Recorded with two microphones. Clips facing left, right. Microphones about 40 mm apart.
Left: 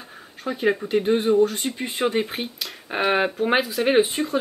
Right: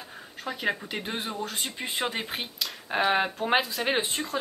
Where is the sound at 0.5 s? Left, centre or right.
Centre.